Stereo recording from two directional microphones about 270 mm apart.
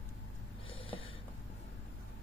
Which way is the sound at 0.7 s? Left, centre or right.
Centre.